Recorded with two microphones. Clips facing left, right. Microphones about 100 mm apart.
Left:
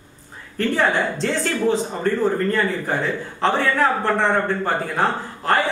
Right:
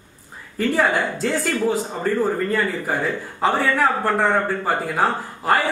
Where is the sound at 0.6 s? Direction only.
5° right (ahead or behind).